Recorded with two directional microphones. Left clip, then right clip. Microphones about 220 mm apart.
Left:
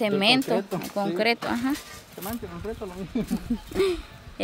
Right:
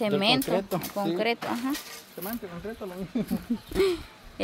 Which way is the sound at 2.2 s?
5° right (ahead or behind).